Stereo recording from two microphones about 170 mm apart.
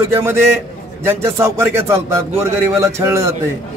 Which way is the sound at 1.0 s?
15° right (ahead or behind).